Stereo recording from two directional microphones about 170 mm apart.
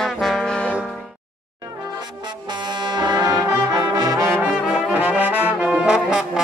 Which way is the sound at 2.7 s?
25° right (ahead or behind).